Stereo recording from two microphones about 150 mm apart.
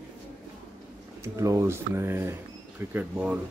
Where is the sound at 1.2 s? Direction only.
20° right (ahead or behind).